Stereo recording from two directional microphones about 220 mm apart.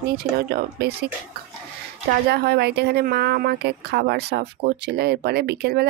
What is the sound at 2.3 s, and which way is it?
Speech, 45° right (ahead or behind).